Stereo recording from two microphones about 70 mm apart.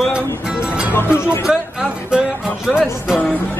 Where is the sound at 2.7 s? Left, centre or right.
Centre.